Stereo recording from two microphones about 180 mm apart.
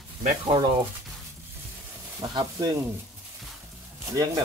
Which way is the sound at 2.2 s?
20° right (ahead or behind).